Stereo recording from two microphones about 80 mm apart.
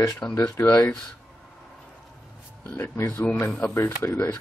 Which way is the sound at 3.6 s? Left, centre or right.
Left.